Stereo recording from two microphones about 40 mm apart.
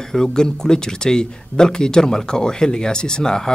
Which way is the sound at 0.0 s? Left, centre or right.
Centre.